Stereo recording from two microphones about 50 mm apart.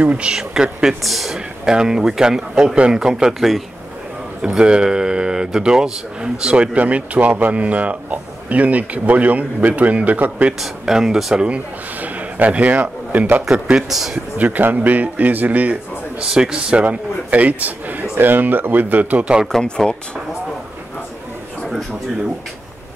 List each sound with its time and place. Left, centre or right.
0.0 s speech: right
1.0 s speech: centre
4.4 s speech: centre; by 10.5 s right
10.6 s speech: centre
11.3 s a man's voice: right
13.5 s speech: centre
14.1 s speech: right
16.2 s a man's voice: centre; by 19.3 s right
19.6 s speech: centre